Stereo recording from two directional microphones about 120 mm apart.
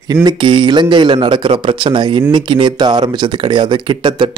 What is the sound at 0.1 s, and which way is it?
A man's voice, 35° right (ahead or behind).